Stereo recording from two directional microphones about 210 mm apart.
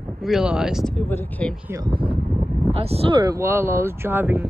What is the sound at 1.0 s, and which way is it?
Speech, 10° left (ahead or behind).